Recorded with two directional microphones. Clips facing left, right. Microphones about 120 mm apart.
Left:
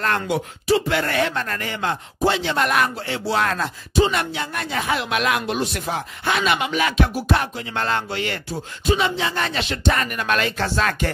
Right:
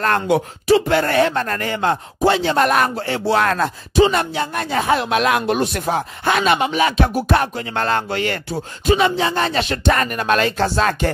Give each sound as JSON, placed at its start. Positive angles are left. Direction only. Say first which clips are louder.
{"t": 0.0, "sound": "speech", "louder": "right 5 dB", "side_deg": -45}
{"t": 4.1, "sound": "speech", "louder": "right 5 dB", "side_deg": -35}
{"t": 5.5, "sound": "speech", "louder": "right 5 dB", "side_deg": -50}
{"t": 7.2, "sound": "speech", "louder": "right 4 dB", "side_deg": -50}
{"t": 10.0, "sound": "speech", "louder": "right 4 dB", "side_deg": -35}